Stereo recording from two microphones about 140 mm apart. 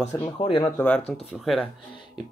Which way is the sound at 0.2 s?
35° left (ahead or behind).